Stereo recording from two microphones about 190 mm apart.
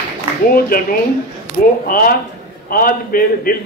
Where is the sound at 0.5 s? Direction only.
50° left (ahead or behind).